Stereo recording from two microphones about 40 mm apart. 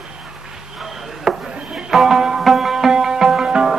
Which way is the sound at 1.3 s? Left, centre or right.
Centre.